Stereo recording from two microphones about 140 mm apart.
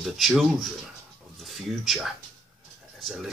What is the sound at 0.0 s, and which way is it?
Speech, centre (ahead or behind).